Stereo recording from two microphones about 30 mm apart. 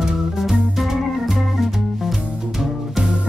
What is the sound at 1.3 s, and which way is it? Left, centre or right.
Organ, centre.